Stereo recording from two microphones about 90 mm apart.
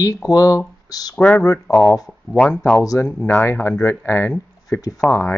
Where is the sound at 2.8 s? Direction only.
40° left (ahead or behind).